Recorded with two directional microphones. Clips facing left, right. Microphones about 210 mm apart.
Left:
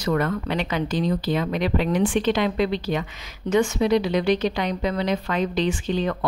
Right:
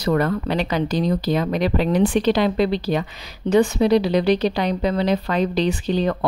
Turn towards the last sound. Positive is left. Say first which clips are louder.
# right 3 dB
turn(degrees=-35)  # may be behind; listen again after turning